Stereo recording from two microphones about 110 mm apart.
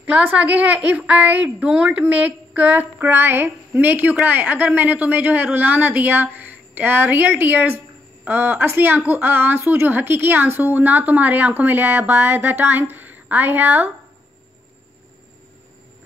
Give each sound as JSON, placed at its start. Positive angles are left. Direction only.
{"t": 0.0, "sound": "a woman's voice", "side_deg": -15}